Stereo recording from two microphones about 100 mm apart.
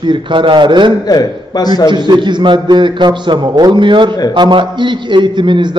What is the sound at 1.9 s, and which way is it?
A man's voice, 50° right (ahead or behind).